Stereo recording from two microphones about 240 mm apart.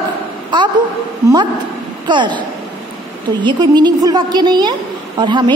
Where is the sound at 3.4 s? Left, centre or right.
Centre.